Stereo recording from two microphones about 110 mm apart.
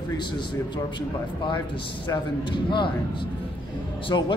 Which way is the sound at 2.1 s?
50° left (ahead or behind).